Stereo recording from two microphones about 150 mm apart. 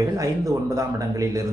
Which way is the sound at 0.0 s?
20° right (ahead or behind).